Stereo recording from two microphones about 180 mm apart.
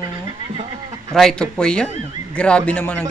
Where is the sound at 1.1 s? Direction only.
5° left (ahead or behind).